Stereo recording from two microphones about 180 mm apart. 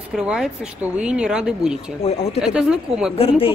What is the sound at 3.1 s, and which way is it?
Speech, 30° left (ahead or behind).